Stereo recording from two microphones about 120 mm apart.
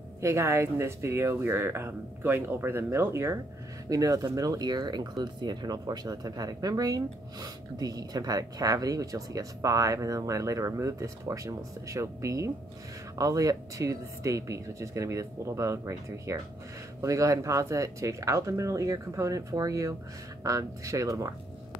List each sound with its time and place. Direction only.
0.2 s speech: 25° right (ahead or behind)